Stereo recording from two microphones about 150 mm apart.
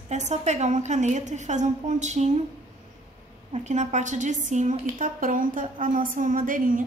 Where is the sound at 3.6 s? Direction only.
50° right (ahead or behind).